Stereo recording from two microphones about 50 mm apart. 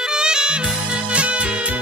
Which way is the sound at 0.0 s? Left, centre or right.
Centre.